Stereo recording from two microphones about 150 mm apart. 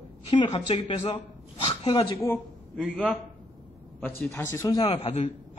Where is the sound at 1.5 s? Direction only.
45° left (ahead or behind).